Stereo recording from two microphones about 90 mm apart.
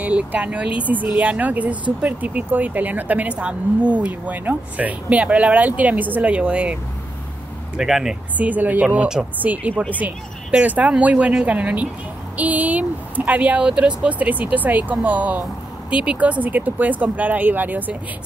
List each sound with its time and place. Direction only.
0.0 s speech: 15° right (ahead or behind)
8.4 s speech: 20° right (ahead or behind)